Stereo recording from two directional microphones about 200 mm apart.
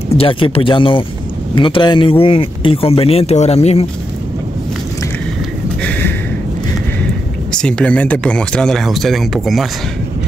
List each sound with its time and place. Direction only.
0.2 s speech: 25° left (ahead or behind)
5.8 s a sound: 10° left (ahead or behind)
7.5 s speech: 5° left (ahead or behind)